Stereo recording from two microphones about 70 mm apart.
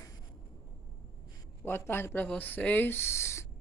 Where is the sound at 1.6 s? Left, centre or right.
Left.